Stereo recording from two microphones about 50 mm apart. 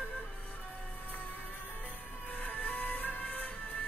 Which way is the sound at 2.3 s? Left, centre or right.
Left.